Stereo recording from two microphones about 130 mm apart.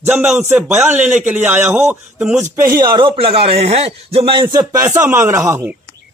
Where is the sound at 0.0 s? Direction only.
10° right (ahead or behind).